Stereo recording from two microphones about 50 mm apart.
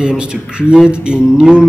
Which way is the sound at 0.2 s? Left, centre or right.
Centre.